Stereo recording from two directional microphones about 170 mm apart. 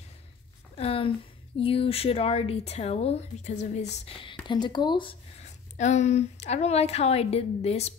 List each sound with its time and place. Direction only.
0.7 s a woman's voice: 35° left (ahead or behind)
4.3 s speech: 25° left (ahead or behind)
5.8 s speech: 40° left (ahead or behind)